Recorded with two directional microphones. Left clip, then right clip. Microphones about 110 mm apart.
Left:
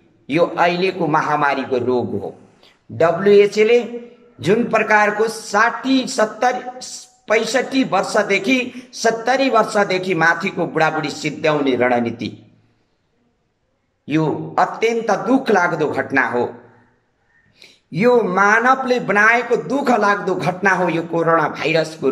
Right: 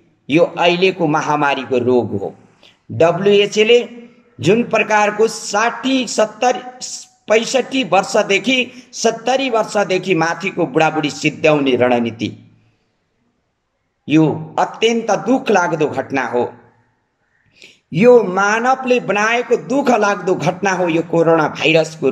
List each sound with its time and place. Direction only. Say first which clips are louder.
0.3 s speech: right 3 dB; 20° right (ahead or behind)
14.0 s speech: right 5 dB; 20° right (ahead or behind)
17.6 s speech: right 4 dB; 20° right (ahead or behind)